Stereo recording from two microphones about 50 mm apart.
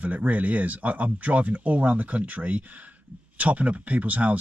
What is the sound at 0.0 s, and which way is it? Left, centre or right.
Speech, right.